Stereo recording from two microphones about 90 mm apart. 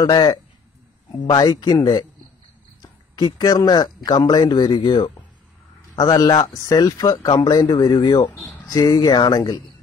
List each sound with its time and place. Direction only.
0.0 s speech: 50° left (ahead or behind)
3.3 s speech: 50° left (ahead or behind)
5.9 s speech: 45° left (ahead or behind)
7.8 s speech: 65° left (ahead or behind)
8.7 s speech: 45° left (ahead or behind)